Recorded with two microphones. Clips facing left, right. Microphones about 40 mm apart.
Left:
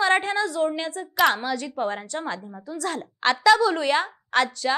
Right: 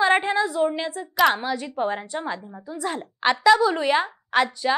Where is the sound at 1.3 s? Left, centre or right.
Centre.